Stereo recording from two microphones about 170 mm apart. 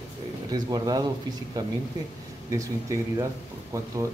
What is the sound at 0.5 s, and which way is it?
Speech, 20° right (ahead or behind).